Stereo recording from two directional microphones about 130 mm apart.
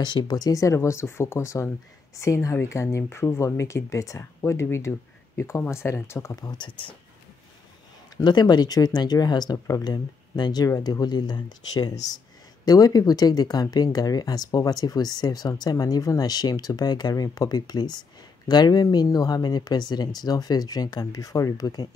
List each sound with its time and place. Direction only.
0.0 s speech: 35° left (ahead or behind)
8.2 s speech: 35° left (ahead or behind)